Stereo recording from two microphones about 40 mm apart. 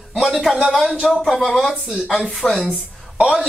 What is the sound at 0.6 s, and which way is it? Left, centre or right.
Speech, centre.